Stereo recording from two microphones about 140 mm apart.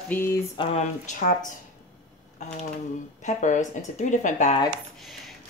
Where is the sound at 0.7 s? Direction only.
65° left (ahead or behind).